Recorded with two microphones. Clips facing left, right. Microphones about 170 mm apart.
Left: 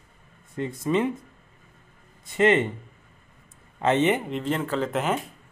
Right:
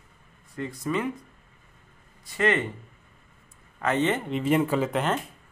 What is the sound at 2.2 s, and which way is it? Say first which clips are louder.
Speech: left 5 dB; 25° left (ahead or behind).